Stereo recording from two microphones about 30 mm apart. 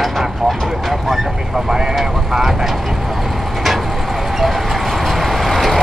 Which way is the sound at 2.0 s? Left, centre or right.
Centre.